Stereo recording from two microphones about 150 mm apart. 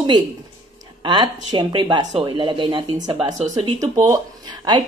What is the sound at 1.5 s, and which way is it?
Speech, 35° right (ahead or behind).